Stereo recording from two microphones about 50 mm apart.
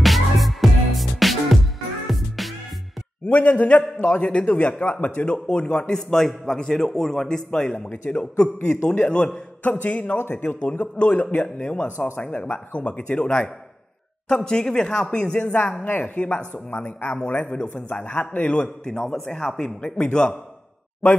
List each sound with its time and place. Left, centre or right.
0.0 s music: centre
3.3 s a man's voice: left; by 7.9 s centre
7.9 s a man's voice: left
9.6 s a man's voice: left
10.1 s a man's voice: left
10.6 s a man's voice: left
18.6 s a man's voice: centre